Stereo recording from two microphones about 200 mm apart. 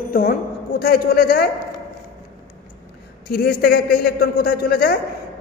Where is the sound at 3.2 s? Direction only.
50° left (ahead or behind).